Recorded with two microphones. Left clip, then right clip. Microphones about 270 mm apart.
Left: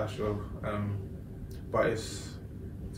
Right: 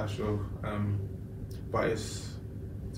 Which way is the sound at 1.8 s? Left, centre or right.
Centre.